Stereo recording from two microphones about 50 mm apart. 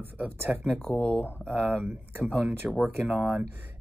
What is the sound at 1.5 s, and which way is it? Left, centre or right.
Speech, right.